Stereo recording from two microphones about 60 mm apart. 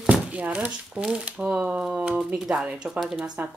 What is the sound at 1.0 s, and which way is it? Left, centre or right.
Speech, centre.